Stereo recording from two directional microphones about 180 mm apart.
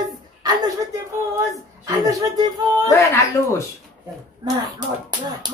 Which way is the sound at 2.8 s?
15° left (ahead or behind).